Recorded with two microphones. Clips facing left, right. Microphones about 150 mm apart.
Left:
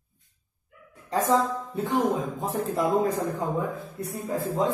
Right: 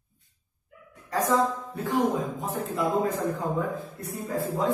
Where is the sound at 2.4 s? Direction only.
35° left (ahead or behind).